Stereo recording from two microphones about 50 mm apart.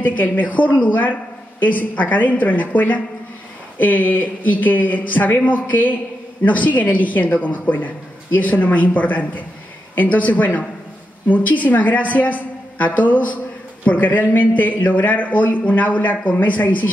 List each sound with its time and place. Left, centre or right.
0.0 s a man's voice: left